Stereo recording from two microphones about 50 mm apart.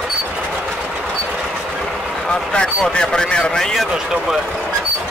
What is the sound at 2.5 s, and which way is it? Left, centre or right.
Speech, centre.